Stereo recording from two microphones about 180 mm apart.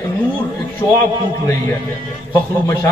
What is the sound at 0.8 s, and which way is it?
Speech, 20° left (ahead or behind).